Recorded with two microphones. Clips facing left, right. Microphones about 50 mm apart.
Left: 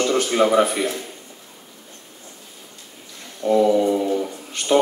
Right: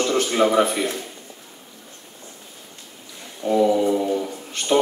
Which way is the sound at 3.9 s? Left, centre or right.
Centre.